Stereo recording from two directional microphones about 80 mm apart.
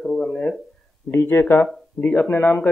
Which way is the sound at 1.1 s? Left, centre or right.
Left.